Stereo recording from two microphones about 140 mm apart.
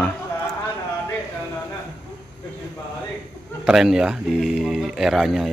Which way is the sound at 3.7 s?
5° right (ahead or behind).